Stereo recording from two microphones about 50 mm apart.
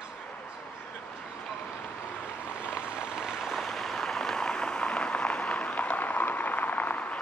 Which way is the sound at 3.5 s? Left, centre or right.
Centre.